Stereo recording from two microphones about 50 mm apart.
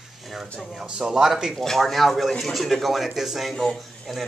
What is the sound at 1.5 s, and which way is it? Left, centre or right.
Speech, centre.